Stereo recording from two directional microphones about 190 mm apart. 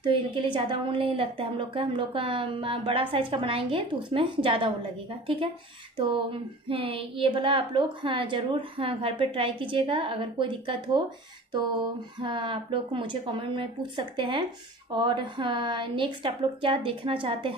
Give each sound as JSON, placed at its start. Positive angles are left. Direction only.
{"t": 0.0, "sound": "a woman's voice", "side_deg": -25}
{"t": 6.7, "sound": "a woman's voice", "side_deg": -30}
{"t": 12.2, "sound": "a woman's voice", "side_deg": -25}